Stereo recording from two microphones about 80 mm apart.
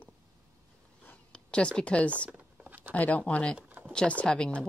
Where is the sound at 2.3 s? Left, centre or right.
Centre.